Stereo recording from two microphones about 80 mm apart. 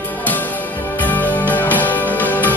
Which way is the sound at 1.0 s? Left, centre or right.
Left.